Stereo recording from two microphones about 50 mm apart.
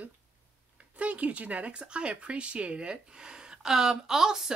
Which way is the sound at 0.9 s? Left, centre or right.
Right.